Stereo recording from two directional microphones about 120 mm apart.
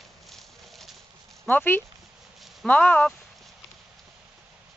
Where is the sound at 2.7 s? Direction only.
10° left (ahead or behind).